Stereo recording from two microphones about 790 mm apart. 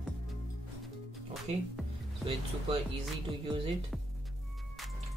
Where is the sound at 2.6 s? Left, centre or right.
Centre.